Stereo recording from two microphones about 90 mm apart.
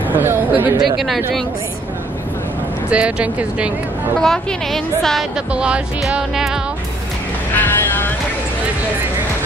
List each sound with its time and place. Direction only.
0.1 s chatter: 25° right (ahead or behind)
0.9 s a woman's voice: centre (ahead or behind)
2.9 s music: 15° right (ahead or behind)
4.2 s a woman's voice: 5° left (ahead or behind)
5.5 s music: 10° right (ahead or behind)
7.5 s vehicle: 20° left (ahead or behind)